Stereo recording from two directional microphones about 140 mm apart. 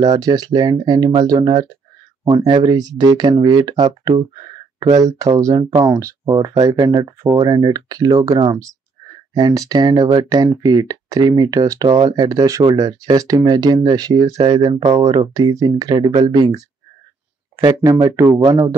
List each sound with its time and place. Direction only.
0.0 s speech: 30° right (ahead or behind)
17.6 s speech: 20° right (ahead or behind)